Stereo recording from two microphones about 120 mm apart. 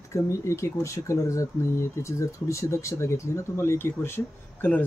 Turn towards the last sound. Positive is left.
turn(degrees=15)  # may be behind; listen again after turning